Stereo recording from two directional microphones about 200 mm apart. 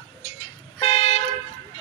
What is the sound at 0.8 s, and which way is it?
Toot, 30° left (ahead or behind).